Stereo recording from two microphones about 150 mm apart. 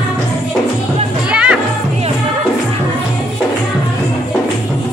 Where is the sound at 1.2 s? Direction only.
5° right (ahead or behind).